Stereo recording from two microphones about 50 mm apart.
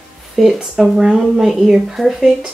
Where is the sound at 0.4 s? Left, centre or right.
Centre.